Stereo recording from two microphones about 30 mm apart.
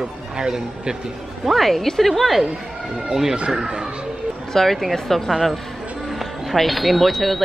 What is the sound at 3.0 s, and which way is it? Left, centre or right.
Speech, centre.